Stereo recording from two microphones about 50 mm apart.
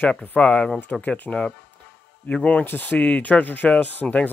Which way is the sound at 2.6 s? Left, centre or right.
Left.